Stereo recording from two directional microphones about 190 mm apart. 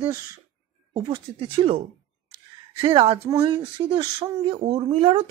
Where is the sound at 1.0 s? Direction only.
25° right (ahead or behind).